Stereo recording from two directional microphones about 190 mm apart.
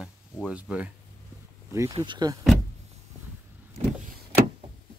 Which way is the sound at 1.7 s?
20° right (ahead or behind).